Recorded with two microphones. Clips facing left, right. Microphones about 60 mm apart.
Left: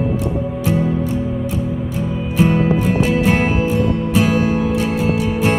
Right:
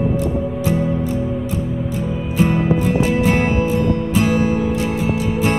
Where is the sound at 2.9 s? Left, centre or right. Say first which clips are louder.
Left 1 dB; left.